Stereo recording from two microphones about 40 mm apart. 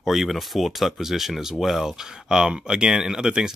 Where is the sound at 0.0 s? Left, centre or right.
Centre.